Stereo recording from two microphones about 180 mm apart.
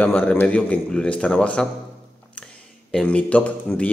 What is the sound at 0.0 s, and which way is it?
Speech, 10° left (ahead or behind).